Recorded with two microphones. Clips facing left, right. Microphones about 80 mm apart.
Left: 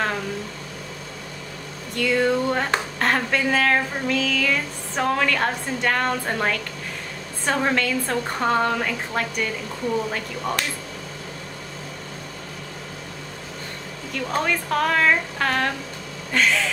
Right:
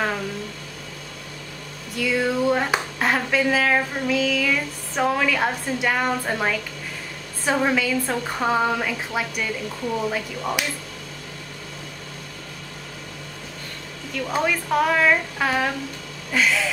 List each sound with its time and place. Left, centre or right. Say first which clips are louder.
2.0 s music: left 2 dB; centre
14.1 s music: right 1 dB; centre